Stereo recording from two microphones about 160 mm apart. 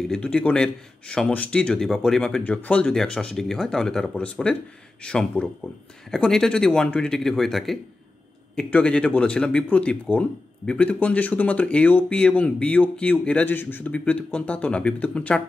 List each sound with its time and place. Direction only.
0.1 s speech: 5° left (ahead or behind)